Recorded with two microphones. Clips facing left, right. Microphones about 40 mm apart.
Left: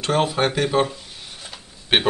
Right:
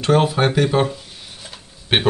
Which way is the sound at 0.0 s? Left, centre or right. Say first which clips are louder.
Right 4 dB; centre.